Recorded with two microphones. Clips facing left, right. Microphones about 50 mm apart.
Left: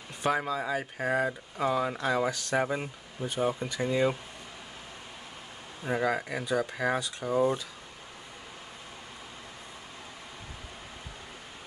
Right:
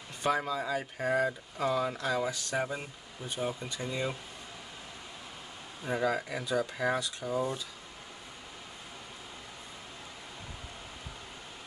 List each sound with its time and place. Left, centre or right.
0.2 s speech: centre
2.0 s speech: left
2.3 s speech: left
2.7 s speech: left
5.9 s speech: centre
7.0 s speech: left